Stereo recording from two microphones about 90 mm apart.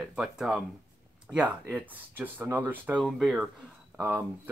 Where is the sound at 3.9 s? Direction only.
20° right (ahead or behind).